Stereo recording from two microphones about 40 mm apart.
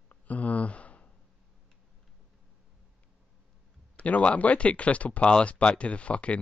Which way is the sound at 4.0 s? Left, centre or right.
Left.